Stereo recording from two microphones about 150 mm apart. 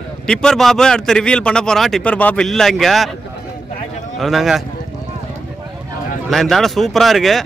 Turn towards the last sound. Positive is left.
turn(degrees=0)  # may be behind; listen again after turning